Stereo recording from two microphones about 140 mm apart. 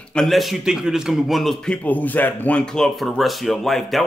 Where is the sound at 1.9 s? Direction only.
10° left (ahead or behind).